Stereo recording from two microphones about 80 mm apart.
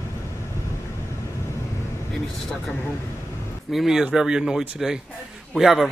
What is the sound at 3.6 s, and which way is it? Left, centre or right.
A man's voice, centre.